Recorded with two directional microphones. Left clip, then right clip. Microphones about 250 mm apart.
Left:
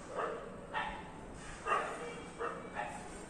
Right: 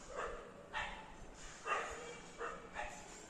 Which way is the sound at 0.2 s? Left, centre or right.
Right.